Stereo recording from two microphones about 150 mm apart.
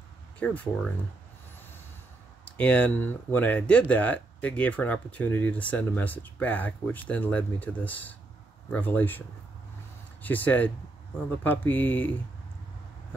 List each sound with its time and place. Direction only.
0.4 s speech: 10° left (ahead or behind)
2.4 s speech: 10° left (ahead or behind)
10.2 s speech: 10° left (ahead or behind)